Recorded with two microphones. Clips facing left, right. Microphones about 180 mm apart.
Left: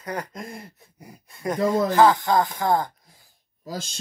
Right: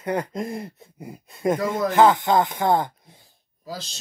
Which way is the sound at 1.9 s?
20° right (ahead or behind).